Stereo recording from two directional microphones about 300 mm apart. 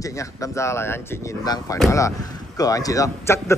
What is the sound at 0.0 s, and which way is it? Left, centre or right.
Speech, centre.